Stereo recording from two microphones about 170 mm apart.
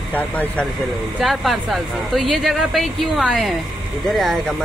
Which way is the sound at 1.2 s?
Centre (ahead or behind).